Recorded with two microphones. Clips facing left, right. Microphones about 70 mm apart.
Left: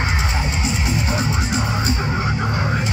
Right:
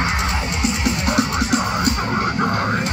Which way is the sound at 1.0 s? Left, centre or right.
Right.